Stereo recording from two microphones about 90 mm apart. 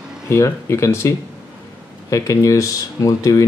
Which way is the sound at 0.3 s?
30° left (ahead or behind).